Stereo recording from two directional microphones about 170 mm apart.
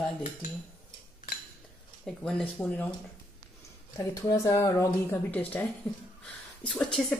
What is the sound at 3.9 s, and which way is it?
A woman's voice, 20° left (ahead or behind).